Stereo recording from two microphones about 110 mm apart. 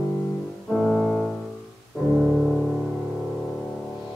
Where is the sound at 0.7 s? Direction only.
5° left (ahead or behind).